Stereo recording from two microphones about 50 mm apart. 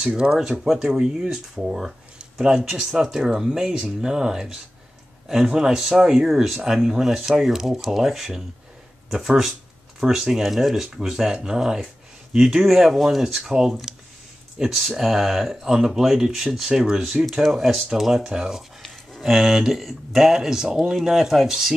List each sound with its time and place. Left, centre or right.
0.0 s speech: centre
0.4 s speech: centre
9.9 s speech: centre